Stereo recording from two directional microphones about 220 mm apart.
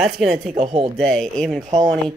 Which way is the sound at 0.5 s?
30° right (ahead or behind).